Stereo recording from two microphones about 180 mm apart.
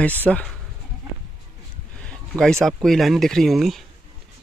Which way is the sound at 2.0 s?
5° left (ahead or behind).